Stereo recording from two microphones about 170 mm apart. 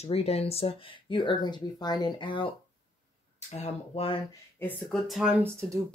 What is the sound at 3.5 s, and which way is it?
Speech, 35° left (ahead or behind).